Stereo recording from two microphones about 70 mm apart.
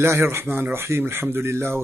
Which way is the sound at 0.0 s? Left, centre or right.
Right.